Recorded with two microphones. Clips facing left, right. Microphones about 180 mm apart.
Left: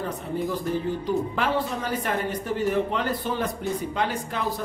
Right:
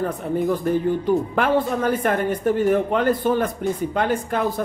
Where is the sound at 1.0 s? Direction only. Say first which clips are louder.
Right 5 dB; 55° right (ahead or behind).